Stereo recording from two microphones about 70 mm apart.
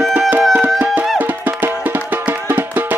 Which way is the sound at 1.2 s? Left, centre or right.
Right.